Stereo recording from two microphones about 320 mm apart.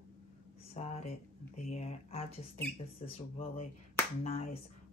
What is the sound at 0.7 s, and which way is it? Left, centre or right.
Speech, centre.